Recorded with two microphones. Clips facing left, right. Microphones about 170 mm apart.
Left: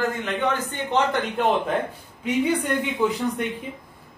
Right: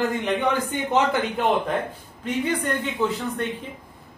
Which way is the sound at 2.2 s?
10° left (ahead or behind).